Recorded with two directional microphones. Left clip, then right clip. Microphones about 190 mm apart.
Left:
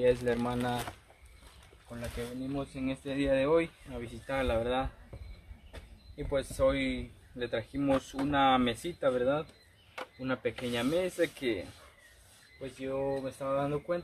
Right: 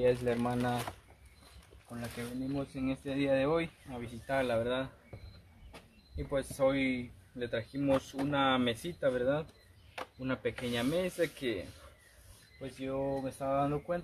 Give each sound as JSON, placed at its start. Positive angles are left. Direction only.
{"t": 0.0, "sound": "speech", "side_deg": -5}
{"t": 12.6, "sound": "speech", "side_deg": 0}